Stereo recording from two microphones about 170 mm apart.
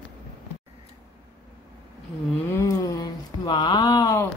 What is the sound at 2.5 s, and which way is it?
Speech, 20° left (ahead or behind).